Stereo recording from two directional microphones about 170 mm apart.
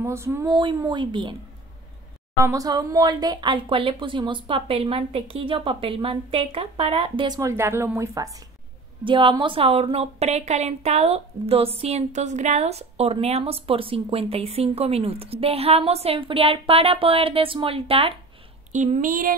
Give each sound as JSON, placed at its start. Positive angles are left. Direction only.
{"t": 0.0, "sound": "speech", "side_deg": -15}
{"t": 0.6, "sound": "speech", "side_deg": -25}
{"t": 2.3, "sound": "speech", "side_deg": -20}
{"t": 9.0, "sound": "speech", "side_deg": -30}
{"t": 18.7, "sound": "speech", "side_deg": -45}